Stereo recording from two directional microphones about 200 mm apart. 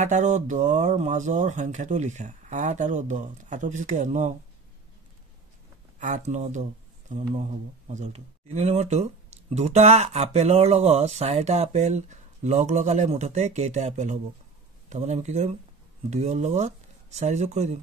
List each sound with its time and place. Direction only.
0.0 s speech: 35° right (ahead or behind)
5.9 s speech: 40° right (ahead or behind)